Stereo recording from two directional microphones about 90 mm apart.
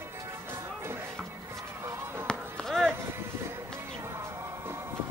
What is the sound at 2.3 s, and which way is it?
Chop, 5° left (ahead or behind).